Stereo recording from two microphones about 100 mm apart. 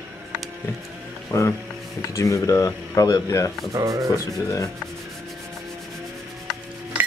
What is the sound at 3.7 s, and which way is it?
Speech, 35° right (ahead or behind).